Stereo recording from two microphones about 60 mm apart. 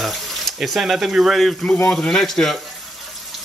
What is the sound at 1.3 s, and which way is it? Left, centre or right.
Speech, centre.